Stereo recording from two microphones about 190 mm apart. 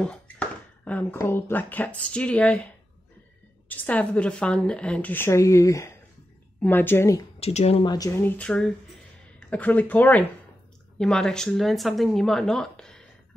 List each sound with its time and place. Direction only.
0.0 s a woman's voice: 5° left (ahead or behind)
7.3 s speech: 30° left (ahead or behind)
8.2 s a woman's voice: 10° left (ahead or behind)